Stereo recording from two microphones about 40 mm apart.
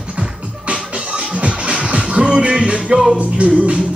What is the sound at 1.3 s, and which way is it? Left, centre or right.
Music, right.